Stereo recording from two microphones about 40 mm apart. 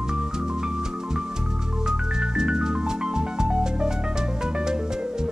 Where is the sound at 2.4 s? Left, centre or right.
Centre.